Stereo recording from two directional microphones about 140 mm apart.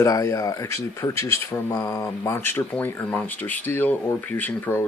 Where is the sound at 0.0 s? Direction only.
20° left (ahead or behind).